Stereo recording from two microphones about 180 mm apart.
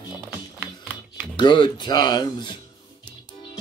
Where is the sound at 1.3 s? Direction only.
25° left (ahead or behind).